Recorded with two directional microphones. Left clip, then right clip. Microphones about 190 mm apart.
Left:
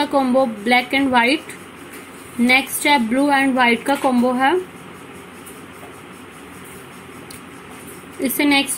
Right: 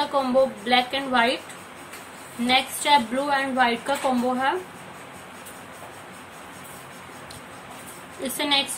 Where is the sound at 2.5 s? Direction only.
30° left (ahead or behind).